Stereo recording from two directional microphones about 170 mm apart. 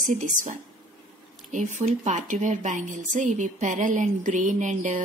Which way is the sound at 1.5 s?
45° right (ahead or behind).